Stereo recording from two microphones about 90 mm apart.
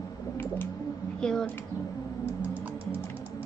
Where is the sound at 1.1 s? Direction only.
5° left (ahead or behind).